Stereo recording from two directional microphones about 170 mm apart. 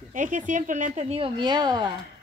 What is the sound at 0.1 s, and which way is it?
Speech, 50° right (ahead or behind).